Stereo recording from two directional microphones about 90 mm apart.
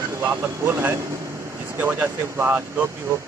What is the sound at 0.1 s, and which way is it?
Speech, 25° right (ahead or behind).